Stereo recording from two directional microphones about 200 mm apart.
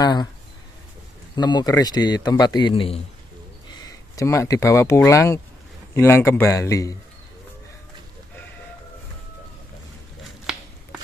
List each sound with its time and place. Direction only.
0.0 s a man's voice: 20° left (ahead or behind)
1.3 s a man's voice: 20° left (ahead or behind)